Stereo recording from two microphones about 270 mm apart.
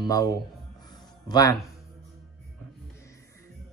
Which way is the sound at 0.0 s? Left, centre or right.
Centre.